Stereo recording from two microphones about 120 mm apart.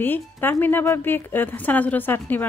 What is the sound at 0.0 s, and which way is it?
A woman's voice, 15° left (ahead or behind).